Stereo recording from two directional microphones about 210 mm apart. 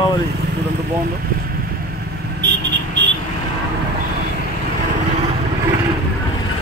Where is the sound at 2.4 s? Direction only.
55° right (ahead or behind).